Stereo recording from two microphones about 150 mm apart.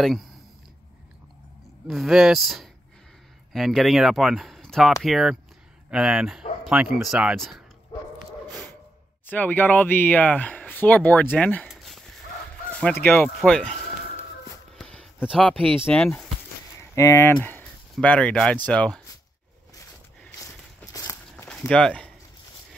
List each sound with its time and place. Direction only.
0.0 s speech: centre (ahead or behind)
1.9 s speech: centre (ahead or behind)
9.2 s speech: 10° left (ahead or behind)
11.6 s a sound: centre (ahead or behind)
13.0 s speech: 15° left (ahead or behind)
14.8 s a sound: 5° left (ahead or behind)
15.3 s speech: 5° left (ahead or behind)
16.9 s speech: 20° left (ahead or behind)
20.9 s walk: 20° left (ahead or behind)
21.5 s speech: 5° left (ahead or behind)